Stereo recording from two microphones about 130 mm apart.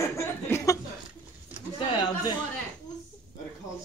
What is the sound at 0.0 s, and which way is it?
Chuckle, 20° left (ahead or behind).